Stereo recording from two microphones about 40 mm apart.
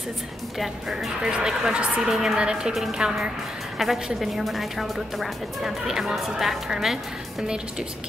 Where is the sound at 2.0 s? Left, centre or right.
Centre.